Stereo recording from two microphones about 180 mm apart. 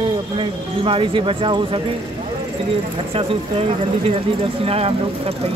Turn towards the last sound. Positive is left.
turn(degrees=-35)  # may be behind; listen again after turning